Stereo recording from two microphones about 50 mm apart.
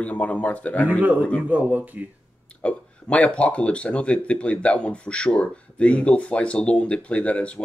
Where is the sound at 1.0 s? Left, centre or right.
Right.